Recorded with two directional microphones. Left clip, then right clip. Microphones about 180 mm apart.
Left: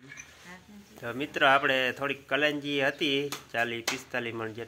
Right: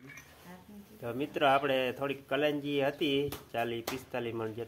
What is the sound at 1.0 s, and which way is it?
Speech, 5° left (ahead or behind).